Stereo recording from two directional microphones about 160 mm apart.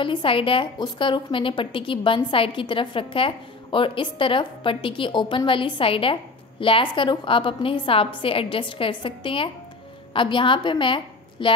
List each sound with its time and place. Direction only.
0.0 s a woman's voice: 30° left (ahead or behind)